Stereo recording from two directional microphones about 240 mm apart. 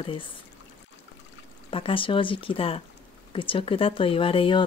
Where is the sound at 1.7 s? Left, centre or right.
Left.